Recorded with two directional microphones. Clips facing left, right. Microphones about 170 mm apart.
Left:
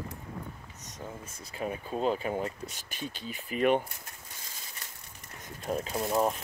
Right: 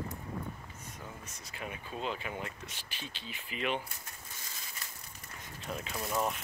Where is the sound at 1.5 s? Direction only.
35° left (ahead or behind).